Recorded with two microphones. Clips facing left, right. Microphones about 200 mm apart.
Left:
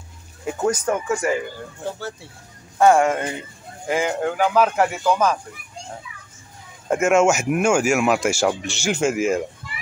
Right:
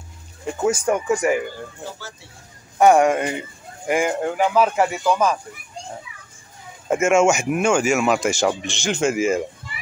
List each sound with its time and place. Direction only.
0.7 s speech: 10° right (ahead or behind)
2.8 s speech: 15° right (ahead or behind)
4.2 s speech: centre (ahead or behind)
6.9 s speech: centre (ahead or behind)